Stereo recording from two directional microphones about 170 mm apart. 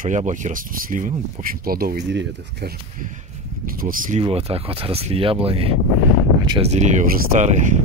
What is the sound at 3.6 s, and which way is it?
Speech, 55° right (ahead or behind).